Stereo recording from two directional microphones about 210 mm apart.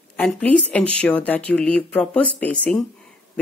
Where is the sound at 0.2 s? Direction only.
5° left (ahead or behind).